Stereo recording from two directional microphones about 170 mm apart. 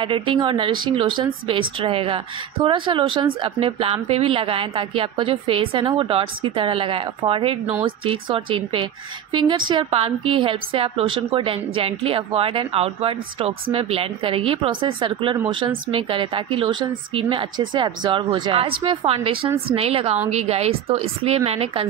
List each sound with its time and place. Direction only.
0.0 s a woman's voice: 30° right (ahead or behind)